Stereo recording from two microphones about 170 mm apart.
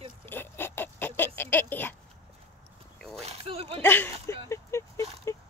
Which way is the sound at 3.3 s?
35° right (ahead or behind).